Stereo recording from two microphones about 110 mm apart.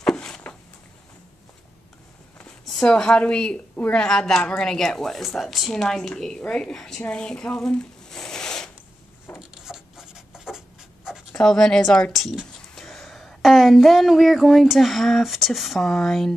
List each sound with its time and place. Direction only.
0.0 s a sound: 5° left (ahead or behind)
2.3 s a woman's voice: 10° left (ahead or behind)
7.0 s zipper: 10° left (ahead or behind)
9.4 s writing: 5° right (ahead or behind)
11.3 s a woman's voice: 5° left (ahead or behind)